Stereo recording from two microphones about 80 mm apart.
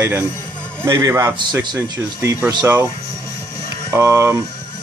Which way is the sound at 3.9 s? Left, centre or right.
Right.